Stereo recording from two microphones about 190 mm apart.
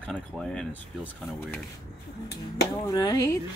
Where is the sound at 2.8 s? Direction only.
20° left (ahead or behind).